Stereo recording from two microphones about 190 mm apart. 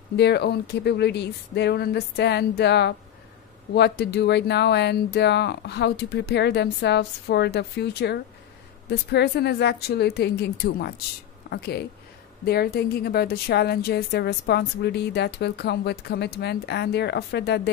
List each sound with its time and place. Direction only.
0.1 s a woman's voice: 65° left (ahead or behind)